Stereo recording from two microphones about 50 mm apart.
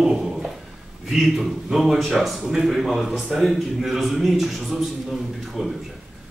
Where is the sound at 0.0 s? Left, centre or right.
Centre.